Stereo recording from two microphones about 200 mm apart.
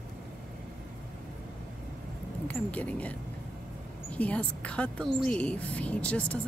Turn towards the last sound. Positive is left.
turn(degrees=5)  # may be behind; listen again after turning